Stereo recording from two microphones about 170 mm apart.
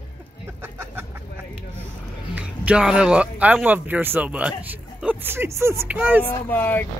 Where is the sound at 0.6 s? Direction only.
15° right (ahead or behind).